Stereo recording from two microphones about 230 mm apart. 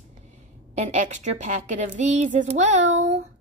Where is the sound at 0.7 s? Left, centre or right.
Right.